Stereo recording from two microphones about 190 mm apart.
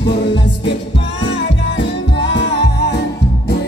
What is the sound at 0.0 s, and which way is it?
Music, 65° left (ahead or behind).